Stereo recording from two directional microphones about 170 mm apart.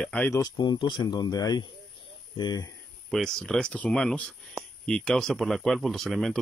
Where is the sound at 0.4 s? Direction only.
25° left (ahead or behind).